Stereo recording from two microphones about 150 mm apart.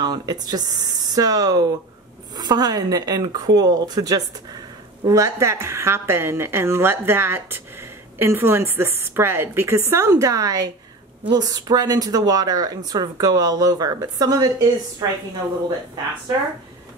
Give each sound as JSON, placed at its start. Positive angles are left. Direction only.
{"t": 0.0, "sound": "a woman's voice", "side_deg": -30}